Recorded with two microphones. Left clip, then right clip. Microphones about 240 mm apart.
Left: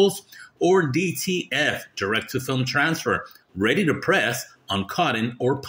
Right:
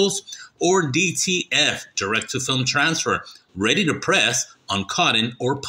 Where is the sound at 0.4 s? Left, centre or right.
Centre.